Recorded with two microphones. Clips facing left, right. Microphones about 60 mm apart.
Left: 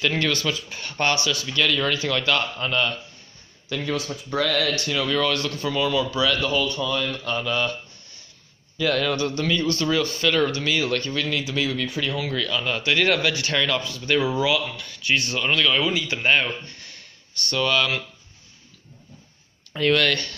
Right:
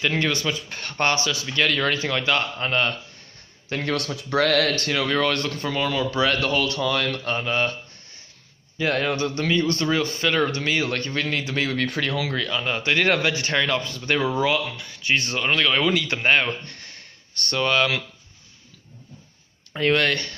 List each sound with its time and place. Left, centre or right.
0.0 s speech: right
0.7 s a man's voice: right
3.8 s speech: right
4.7 s a man's voice: right
7.2 s a man's voice: right
8.7 s a man's voice: right
12.3 s a man's voice: right
14.8 s a man's voice: right
15.8 s speech: right
16.2 s speech: right
19.7 s speech: right